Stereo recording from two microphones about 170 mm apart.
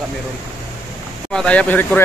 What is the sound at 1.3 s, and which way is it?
Speech, 5° left (ahead or behind).